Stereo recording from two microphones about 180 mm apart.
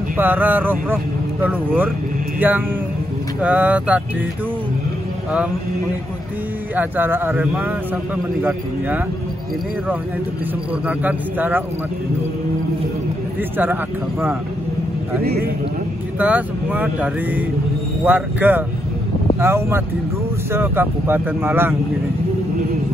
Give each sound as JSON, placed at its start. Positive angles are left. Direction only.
{"t": 0.2, "sound": "a man's voice", "side_deg": -10}
{"t": 2.4, "sound": "a man's voice", "side_deg": -10}
{"t": 6.7, "sound": "a man's voice", "side_deg": -10}
{"t": 10.9, "sound": "a man's voice", "side_deg": -10}
{"t": 15.2, "sound": "speech", "side_deg": -60}
{"t": 16.2, "sound": "a man's voice", "side_deg": -10}